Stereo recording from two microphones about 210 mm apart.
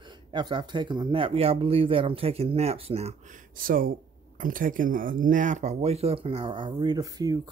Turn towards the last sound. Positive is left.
turn(degrees=-20)  # may be behind; listen again after turning